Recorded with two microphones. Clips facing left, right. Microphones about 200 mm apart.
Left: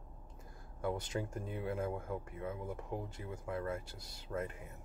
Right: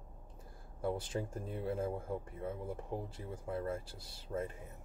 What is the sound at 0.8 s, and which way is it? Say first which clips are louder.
Speech: right 1 dB; 30° right (ahead or behind).